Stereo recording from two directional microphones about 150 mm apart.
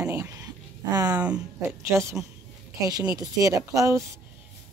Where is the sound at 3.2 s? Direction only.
25° right (ahead or behind).